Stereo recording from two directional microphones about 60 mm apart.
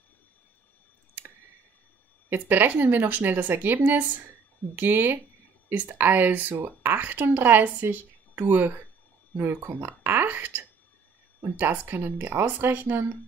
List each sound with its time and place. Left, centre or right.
2.2 s speech: right